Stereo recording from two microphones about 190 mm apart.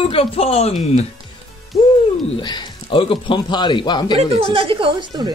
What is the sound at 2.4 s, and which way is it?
A man's voice, 25° left (ahead or behind).